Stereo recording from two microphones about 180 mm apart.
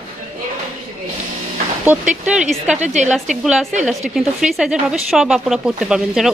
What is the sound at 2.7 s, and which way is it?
Speech, 40° right (ahead or behind).